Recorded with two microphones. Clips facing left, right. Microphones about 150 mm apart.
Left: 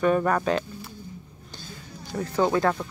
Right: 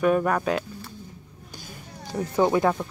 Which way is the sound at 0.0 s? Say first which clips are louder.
Even; 5° right (ahead or behind).